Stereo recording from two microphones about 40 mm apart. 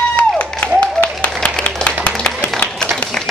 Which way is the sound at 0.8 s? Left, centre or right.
Left.